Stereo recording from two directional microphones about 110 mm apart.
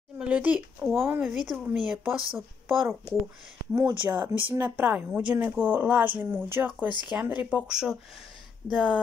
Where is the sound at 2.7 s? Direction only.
Centre (ahead or behind).